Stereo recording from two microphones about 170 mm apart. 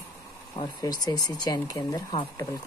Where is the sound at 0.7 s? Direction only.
25° left (ahead or behind).